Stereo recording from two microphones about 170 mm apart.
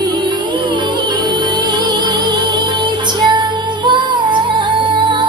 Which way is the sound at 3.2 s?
25° right (ahead or behind).